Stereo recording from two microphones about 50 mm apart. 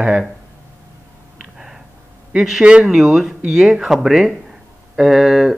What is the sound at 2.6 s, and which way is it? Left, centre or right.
Speech, centre.